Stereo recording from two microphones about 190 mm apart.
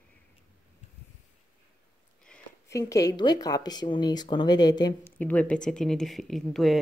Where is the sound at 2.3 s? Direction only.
5° left (ahead or behind).